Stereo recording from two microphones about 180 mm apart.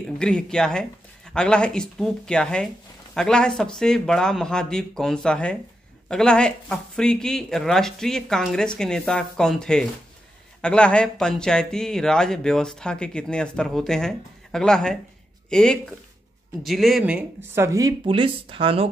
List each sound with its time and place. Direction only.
0.2 s speech: 5° left (ahead or behind); by 18.9 s 30° right (ahead or behind)